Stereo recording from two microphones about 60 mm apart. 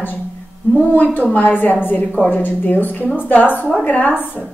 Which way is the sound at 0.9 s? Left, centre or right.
Left.